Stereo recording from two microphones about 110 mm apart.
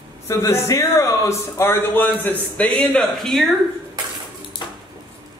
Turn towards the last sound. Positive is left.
turn(degrees=45)  # may be behind; listen again after turning